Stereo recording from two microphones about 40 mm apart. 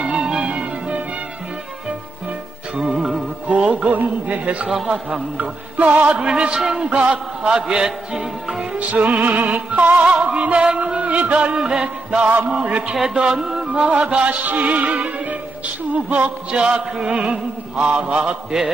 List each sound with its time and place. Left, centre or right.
0.2 s music: right
0.5 s music: right
2.9 s music: centre
3.4 s music: right
3.9 s music: right
5.9 s a man's voice: right; by 8.5 s centre
8.7 s music: right
11.5 s a man's voice: centre
13.1 s music: right
16.5 s a man's voice: right